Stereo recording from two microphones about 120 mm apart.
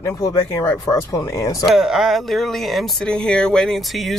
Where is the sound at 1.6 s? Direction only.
5° right (ahead or behind).